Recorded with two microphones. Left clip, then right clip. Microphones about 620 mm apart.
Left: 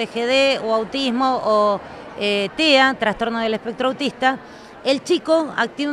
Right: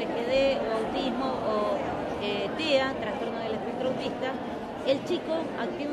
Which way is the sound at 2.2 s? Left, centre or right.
Left.